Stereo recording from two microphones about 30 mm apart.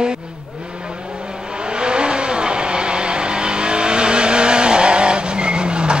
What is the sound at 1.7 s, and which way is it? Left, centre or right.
Vehicle, right.